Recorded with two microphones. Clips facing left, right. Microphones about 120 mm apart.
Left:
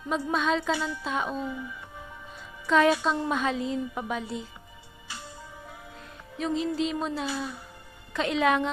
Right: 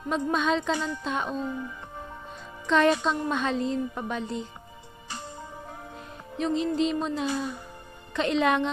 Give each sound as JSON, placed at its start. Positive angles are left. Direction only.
{"t": 0.3, "sound": "music", "side_deg": 0}
{"t": 1.4, "sound": "speech", "side_deg": -40}
{"t": 2.6, "sound": "a woman's voice", "side_deg": 5}
{"t": 6.3, "sound": "music", "side_deg": 5}